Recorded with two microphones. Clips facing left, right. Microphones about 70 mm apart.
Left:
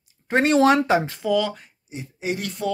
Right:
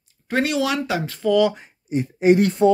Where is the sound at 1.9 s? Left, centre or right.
Right.